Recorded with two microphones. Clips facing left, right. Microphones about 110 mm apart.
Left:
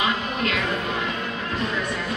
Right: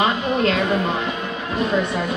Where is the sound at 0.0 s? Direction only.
35° right (ahead or behind).